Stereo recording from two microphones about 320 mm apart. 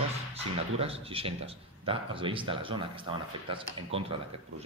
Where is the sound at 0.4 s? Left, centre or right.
Centre.